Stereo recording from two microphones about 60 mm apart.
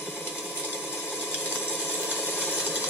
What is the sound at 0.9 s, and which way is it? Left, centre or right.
Sewing machine, centre.